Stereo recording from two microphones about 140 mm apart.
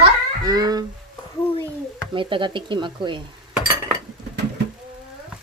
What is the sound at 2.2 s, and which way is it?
A woman's voice, 35° right (ahead or behind).